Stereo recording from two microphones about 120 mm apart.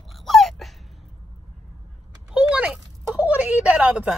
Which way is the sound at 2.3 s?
10° right (ahead or behind).